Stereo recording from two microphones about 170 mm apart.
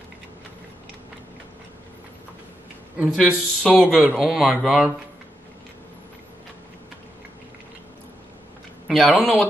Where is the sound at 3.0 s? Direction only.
10° right (ahead or behind).